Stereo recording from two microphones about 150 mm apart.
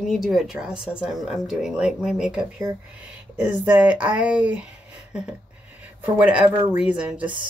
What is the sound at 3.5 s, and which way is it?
Speech, 10° right (ahead or behind).